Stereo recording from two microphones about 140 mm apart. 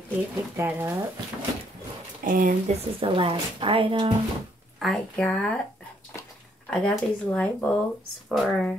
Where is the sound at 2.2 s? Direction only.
75° right (ahead or behind).